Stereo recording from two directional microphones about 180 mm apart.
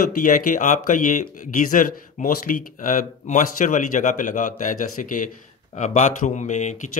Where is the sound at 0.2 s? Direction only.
45° left (ahead or behind).